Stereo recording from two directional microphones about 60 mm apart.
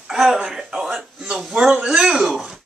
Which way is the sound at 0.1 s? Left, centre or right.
Centre.